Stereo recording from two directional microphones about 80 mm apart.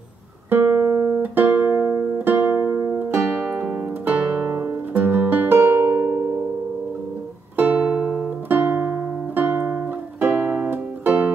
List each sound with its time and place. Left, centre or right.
0.5 s music: right
7.5 s music: right